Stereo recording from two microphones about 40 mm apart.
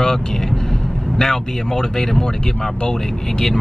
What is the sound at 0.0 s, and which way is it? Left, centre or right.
Vehicle, centre.